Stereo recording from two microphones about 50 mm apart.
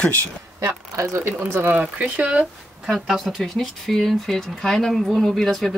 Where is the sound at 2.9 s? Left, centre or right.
Centre.